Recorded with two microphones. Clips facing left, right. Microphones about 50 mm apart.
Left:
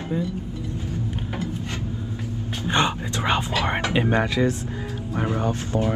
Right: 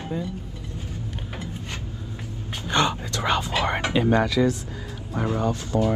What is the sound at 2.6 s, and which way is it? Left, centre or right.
Speech, left.